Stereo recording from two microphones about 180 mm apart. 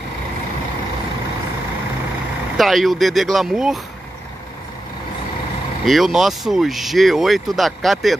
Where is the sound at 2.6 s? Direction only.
Centre (ahead or behind).